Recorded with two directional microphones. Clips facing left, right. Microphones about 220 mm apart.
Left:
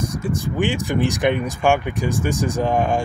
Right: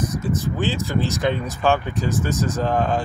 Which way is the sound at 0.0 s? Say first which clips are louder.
Even; 15° left (ahead or behind).